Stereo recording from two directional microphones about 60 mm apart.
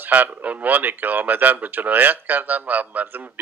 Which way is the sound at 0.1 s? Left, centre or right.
Right.